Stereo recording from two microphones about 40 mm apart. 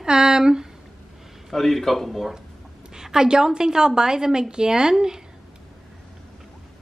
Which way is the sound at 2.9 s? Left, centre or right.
Centre.